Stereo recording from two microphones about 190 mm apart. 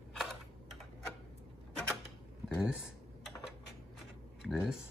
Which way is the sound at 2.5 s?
5° right (ahead or behind).